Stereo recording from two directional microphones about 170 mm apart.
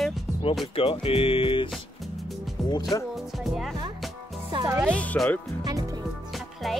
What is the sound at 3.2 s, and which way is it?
Speech, centre (ahead or behind).